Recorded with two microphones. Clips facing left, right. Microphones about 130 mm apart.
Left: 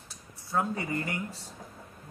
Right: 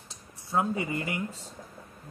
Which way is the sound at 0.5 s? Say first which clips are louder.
Right 2 dB; 10° right (ahead or behind).